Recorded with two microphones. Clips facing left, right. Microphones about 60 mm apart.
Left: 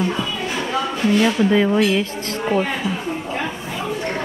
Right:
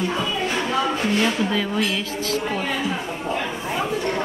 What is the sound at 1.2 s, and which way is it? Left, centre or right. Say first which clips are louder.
Speech: left 6 dB; left.